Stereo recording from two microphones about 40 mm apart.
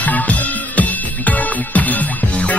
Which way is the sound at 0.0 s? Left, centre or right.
Left.